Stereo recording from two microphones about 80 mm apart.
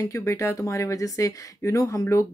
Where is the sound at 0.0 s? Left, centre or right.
Left.